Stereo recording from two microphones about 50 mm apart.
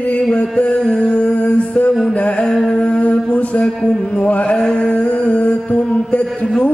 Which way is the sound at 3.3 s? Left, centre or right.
Left.